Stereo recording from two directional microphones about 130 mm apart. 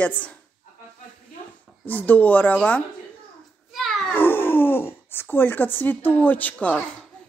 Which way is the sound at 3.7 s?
Centre (ahead or behind).